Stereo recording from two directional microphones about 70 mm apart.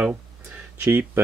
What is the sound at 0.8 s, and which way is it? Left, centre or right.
Speech, right.